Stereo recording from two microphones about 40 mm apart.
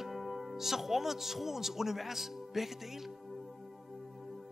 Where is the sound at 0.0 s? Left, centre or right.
Centre.